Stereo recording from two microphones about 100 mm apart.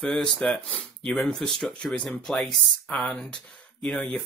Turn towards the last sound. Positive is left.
turn(degrees=10)  # may be behind; listen again after turning